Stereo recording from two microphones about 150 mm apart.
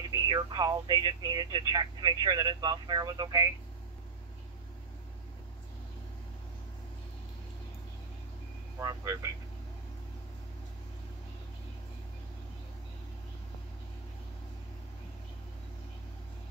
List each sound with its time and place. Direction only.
0.1 s speech: 30° right (ahead or behind)
8.7 s speech: 20° right (ahead or behind)